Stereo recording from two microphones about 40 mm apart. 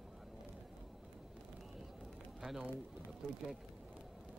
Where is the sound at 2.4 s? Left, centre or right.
Centre.